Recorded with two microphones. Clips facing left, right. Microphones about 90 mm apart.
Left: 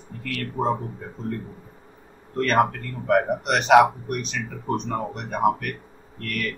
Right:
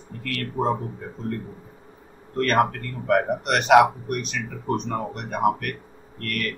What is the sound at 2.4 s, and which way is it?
Speech, centre (ahead or behind).